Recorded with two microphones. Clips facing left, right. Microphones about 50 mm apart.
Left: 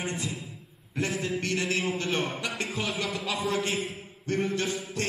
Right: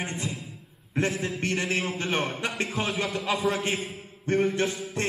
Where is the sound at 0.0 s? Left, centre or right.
Right.